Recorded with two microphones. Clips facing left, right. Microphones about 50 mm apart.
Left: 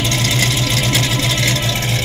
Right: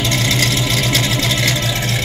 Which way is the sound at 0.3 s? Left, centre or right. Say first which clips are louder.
Right 1 dB; centre.